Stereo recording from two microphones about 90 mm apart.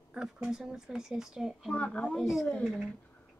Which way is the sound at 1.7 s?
10° left (ahead or behind).